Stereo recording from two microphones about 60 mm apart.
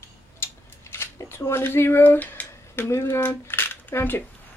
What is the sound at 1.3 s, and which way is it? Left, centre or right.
Speech, left.